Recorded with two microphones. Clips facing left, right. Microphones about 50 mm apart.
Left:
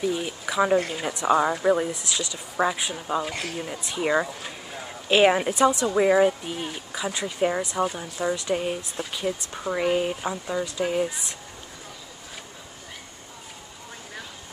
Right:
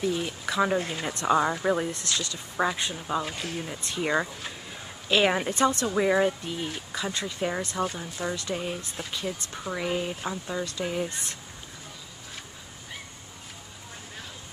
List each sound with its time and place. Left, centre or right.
0.0 s speech: centre
5.0 s a woman's voice: centre
5.3 s speech: centre
9.0 s speech: centre
9.5 s speech: centre
10.2 s speech: centre